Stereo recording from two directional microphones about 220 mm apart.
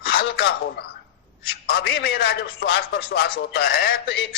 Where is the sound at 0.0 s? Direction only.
55° left (ahead or behind).